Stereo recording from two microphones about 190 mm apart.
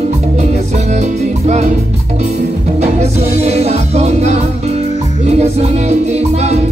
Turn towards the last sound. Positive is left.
turn(degrees=-35)  # may be behind; listen again after turning